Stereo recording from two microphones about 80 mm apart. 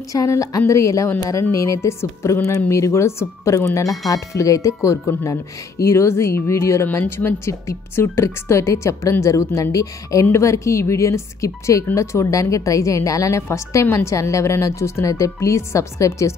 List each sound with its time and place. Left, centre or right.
0.1 s a woman's voice: left